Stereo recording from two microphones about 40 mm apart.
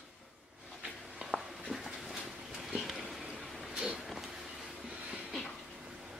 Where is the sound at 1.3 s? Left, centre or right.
Right.